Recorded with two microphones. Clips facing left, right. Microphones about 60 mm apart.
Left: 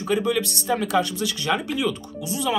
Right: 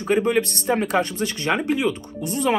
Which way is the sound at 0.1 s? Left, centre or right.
Right.